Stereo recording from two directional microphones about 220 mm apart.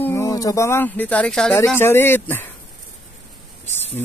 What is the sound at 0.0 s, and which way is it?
Speech, 15° left (ahead or behind).